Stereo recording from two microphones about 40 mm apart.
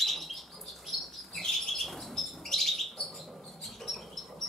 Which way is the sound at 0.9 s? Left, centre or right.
Centre.